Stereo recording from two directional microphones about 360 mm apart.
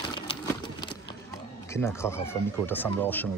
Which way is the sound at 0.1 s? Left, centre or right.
Centre.